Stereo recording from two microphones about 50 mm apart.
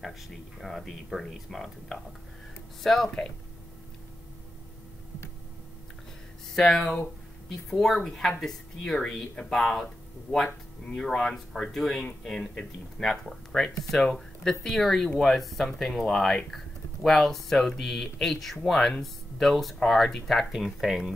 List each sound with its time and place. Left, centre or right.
0.6 s speech: centre
3.1 s speech: centre
6.5 s speech: centre
11.0 s speech: centre
12.0 s speech: centre